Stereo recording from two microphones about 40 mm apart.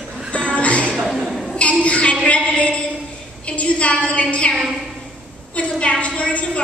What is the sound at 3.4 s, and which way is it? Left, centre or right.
A woman's voice, left.